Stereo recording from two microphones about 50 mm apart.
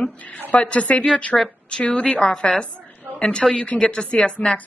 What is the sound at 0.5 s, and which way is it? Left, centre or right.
A woman's voice, left.